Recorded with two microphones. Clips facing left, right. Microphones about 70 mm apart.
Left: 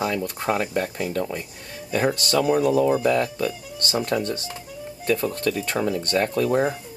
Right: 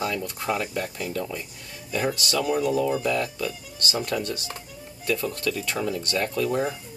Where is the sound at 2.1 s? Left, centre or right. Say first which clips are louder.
Left 4 dB; left.